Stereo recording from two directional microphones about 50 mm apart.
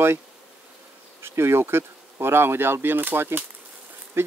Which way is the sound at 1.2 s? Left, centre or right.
Right.